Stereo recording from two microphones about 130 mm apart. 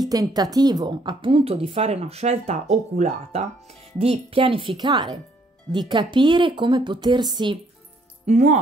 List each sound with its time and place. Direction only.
0.1 s a woman's voice: 30° right (ahead or behind)
8.3 s speech: 65° right (ahead or behind)